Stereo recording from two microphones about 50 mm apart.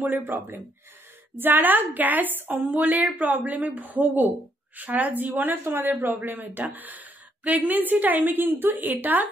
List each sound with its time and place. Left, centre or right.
0.0 s a woman's voice: right